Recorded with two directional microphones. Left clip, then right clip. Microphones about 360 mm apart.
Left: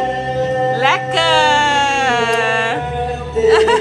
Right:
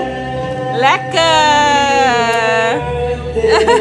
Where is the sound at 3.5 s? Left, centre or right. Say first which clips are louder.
Right 1 dB; centre.